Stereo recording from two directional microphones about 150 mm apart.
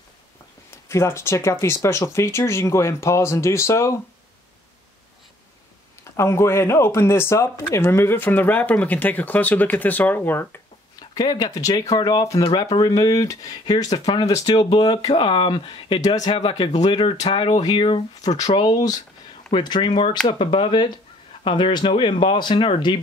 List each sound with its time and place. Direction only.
0.7 s speech: 15° left (ahead or behind)
6.1 s speech: 20° left (ahead or behind)
11.0 s speech: 25° left (ahead or behind)